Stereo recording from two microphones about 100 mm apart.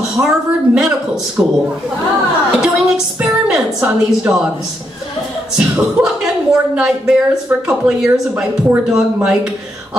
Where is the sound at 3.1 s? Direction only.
15° right (ahead or behind).